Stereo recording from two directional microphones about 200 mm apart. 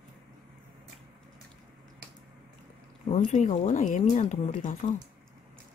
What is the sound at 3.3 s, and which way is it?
Speech, 40° left (ahead or behind).